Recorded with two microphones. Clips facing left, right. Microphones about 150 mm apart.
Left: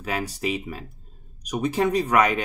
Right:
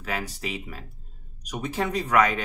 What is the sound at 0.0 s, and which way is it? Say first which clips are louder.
Speech: left 4 dB; 15° left (ahead or behind).